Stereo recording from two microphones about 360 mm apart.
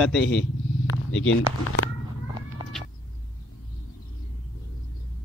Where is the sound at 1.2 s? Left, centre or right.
Left.